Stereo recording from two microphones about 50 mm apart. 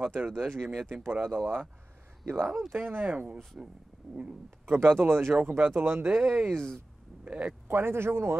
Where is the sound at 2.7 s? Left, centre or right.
Right.